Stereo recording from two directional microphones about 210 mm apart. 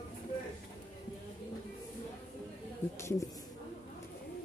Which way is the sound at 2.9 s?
15° left (ahead or behind).